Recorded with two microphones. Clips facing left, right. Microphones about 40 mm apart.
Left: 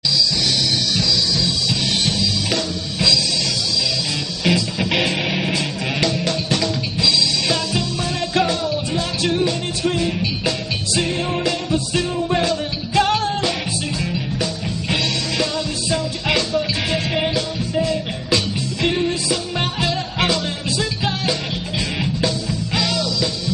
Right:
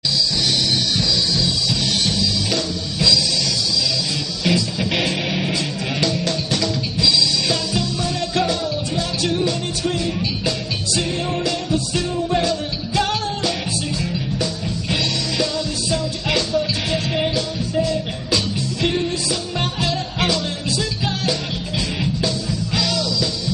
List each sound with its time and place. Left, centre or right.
4.5 s music: centre
14.4 s music: centre
22.8 s music: centre